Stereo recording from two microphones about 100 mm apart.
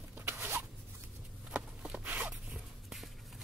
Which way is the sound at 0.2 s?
25° right (ahead or behind).